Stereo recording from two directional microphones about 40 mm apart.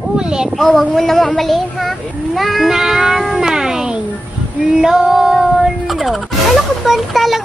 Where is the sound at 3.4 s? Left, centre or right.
Centre.